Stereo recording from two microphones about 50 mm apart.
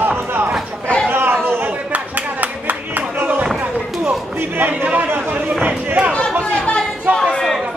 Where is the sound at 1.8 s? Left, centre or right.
Right.